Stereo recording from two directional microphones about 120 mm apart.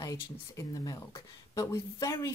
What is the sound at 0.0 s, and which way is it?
Speech, 30° left (ahead or behind).